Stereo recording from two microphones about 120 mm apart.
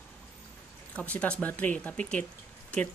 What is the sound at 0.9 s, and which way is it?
Speech, 10° left (ahead or behind).